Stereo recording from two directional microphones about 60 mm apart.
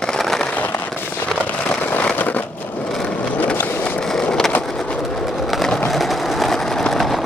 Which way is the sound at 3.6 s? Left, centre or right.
Left.